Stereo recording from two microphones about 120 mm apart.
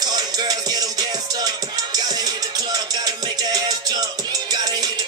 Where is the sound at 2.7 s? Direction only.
35° right (ahead or behind).